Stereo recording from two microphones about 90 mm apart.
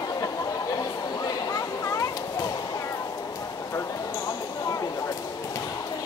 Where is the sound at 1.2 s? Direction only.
45° left (ahead or behind).